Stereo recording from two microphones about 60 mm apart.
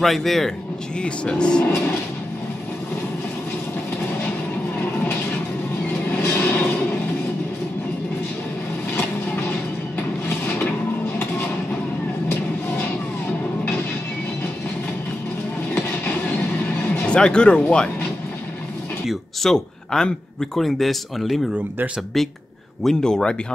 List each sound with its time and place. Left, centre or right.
0.0 s speech: centre
1.0 s speech: centre
6.0 s vehicle: left
10.2 s mechanisms: left
17.0 s speech: centre
19.4 s speech: centre
22.8 s speech: centre